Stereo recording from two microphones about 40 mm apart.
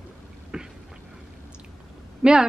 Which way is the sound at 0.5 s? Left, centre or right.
Right.